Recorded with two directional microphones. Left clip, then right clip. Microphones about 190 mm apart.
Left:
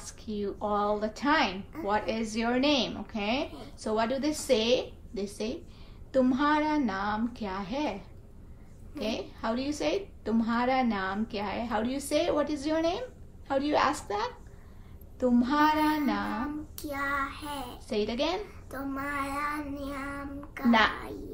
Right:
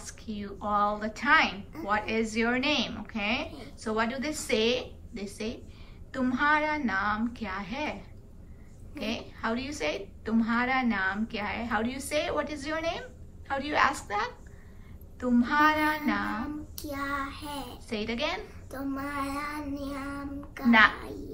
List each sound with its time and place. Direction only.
0.0 s a woman's voice: 20° left (ahead or behind)
15.1 s child singing: 20° left (ahead or behind)